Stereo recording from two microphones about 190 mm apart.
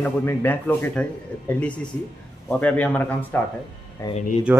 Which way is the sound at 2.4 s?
5° left (ahead or behind).